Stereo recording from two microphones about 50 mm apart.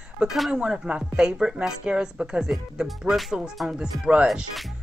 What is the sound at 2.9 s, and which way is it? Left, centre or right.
Speech, centre.